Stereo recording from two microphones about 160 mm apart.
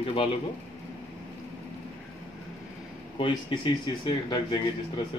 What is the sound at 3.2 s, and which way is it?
Speech, 30° left (ahead or behind).